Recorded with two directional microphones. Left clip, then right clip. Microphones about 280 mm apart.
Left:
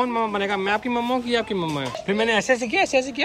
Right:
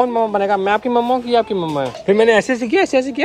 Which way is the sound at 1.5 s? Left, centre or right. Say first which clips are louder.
Right 6 dB; centre.